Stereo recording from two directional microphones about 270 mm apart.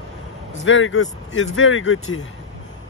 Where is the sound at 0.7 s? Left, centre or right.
Left.